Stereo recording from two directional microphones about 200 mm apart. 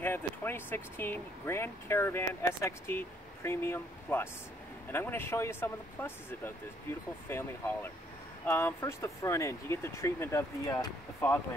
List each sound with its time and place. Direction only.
0.0 s speech: 10° left (ahead or behind)